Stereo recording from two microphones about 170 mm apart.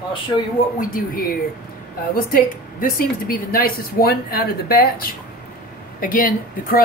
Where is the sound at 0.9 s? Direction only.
55° left (ahead or behind).